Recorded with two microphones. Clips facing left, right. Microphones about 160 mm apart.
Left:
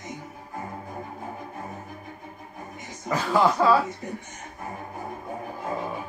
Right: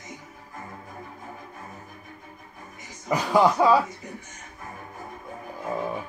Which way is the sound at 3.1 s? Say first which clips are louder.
Right 2 dB; 15° right (ahead or behind).